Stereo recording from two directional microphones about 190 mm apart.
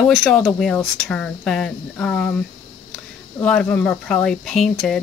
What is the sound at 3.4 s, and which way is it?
Speech, 5° left (ahead or behind).